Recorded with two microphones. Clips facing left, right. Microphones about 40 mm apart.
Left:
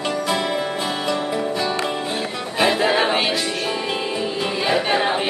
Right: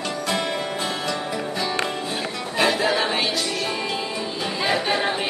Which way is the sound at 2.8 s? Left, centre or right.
Left.